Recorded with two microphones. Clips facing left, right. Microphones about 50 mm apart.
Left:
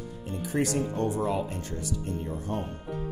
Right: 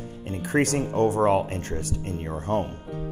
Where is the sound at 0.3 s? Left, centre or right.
Right.